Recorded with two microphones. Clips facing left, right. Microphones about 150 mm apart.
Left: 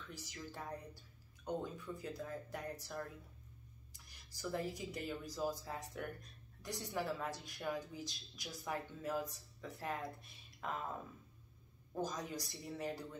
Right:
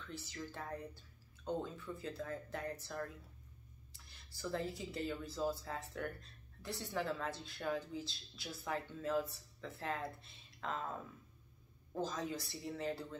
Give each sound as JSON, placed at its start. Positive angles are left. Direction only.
{"t": 0.1, "sound": "speech", "side_deg": 10}
{"t": 12.0, "sound": "speech", "side_deg": 15}